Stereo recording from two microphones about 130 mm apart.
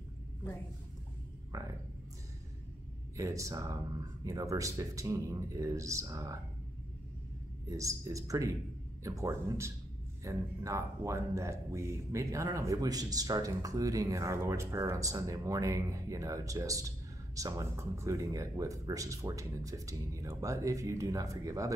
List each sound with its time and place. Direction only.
1.5 s speech: 25° right (ahead or behind)
3.2 s speech: 25° right (ahead or behind)
7.7 s speech: 25° right (ahead or behind)